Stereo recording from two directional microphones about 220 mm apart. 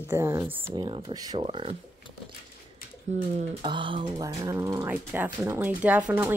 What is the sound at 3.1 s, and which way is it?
Speech, 30° right (ahead or behind).